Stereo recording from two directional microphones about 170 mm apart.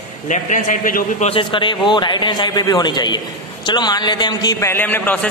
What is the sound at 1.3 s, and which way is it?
A man's voice, 30° left (ahead or behind).